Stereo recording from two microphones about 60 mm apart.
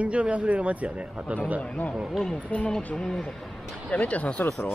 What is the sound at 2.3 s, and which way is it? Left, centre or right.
Speech, left.